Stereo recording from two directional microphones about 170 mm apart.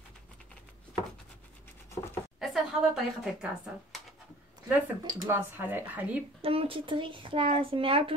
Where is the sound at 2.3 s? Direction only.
Centre (ahead or behind).